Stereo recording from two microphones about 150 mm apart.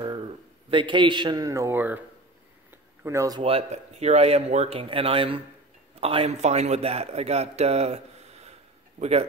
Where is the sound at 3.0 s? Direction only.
20° right (ahead or behind).